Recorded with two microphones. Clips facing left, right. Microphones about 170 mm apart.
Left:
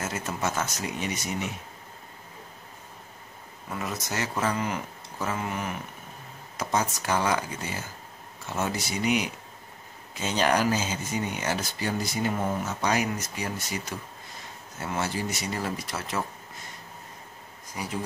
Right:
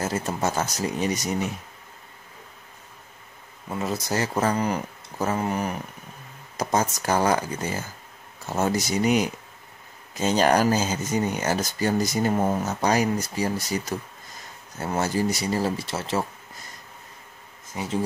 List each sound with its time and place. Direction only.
0.0 s speech: 30° right (ahead or behind)
3.7 s speech: 30° right (ahead or behind)
17.8 s speech: 25° right (ahead or behind)